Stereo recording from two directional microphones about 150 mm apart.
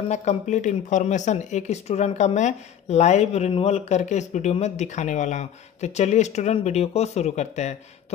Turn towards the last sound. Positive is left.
turn(degrees=50)  # may be behind; listen again after turning